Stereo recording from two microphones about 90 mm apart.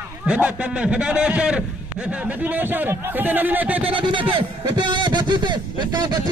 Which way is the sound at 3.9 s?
65° right (ahead or behind).